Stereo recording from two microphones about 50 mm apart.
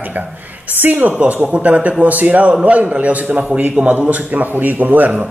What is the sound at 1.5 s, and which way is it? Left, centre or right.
A man's voice, right.